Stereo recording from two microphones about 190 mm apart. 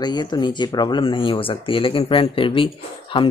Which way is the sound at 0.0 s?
20° left (ahead or behind).